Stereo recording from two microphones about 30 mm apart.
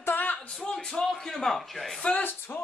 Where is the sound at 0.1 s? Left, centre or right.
Left.